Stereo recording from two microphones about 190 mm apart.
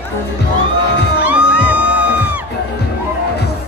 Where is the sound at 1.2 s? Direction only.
5° right (ahead or behind).